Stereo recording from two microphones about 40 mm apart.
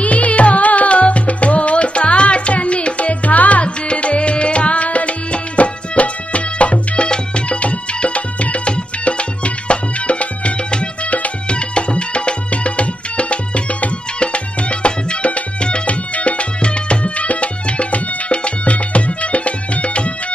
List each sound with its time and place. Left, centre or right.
0.0 s music: left